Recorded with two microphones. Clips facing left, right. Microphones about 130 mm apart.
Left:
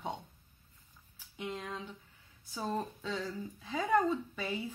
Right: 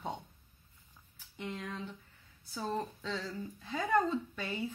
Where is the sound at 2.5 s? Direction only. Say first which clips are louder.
Even; 10° left (ahead or behind).